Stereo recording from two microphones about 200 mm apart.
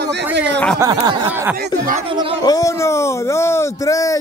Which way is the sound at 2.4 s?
15° left (ahead or behind).